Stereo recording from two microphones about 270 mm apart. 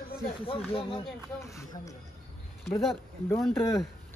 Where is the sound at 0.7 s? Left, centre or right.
Left.